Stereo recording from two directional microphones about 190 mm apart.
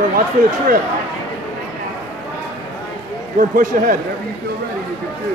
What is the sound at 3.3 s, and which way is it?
Speech, 45° right (ahead or behind).